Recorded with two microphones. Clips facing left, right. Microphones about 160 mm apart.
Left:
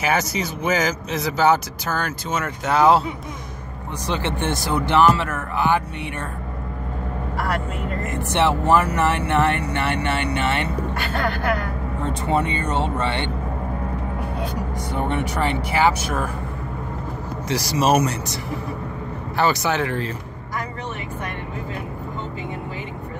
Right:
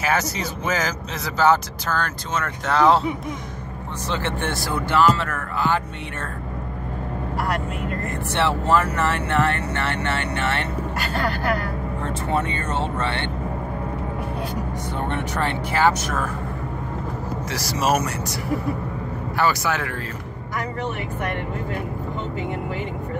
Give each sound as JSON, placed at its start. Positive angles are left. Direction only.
{"t": 0.0, "sound": "speech", "side_deg": 15}
{"t": 4.1, "sound": "speech", "side_deg": 20}
{"t": 8.0, "sound": "speech", "side_deg": 20}
{"t": 12.0, "sound": "speech", "side_deg": 20}
{"t": 15.0, "sound": "speech", "side_deg": 15}
{"t": 17.5, "sound": "speech", "side_deg": 20}